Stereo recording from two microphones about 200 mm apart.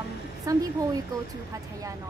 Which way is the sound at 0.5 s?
15° right (ahead or behind).